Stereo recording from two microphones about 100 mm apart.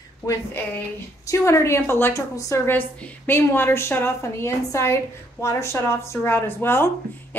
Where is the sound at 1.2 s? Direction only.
30° left (ahead or behind).